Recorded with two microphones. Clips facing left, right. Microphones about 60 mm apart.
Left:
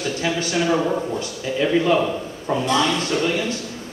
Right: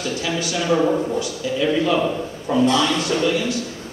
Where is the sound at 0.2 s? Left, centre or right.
Left.